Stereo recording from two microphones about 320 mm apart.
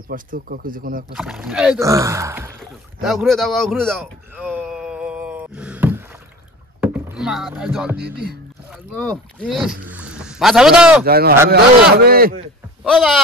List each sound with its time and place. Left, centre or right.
0.1 s speech: right
1.1 s speech: centre
3.0 s a sound: centre
6.8 s speech: centre
8.0 s speech: right
8.9 s speech: centre
11.1 s speech: right
12.8 s speech: centre